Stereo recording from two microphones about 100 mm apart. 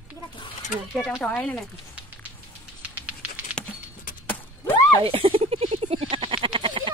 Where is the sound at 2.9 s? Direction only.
15° right (ahead or behind).